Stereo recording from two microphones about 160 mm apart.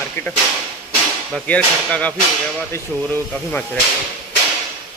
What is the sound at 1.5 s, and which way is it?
Speech, 10° left (ahead or behind).